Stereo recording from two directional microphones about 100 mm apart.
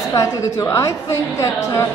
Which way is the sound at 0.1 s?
30° left (ahead or behind).